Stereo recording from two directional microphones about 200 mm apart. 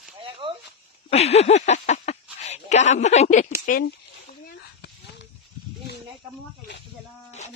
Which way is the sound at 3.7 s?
50° left (ahead or behind).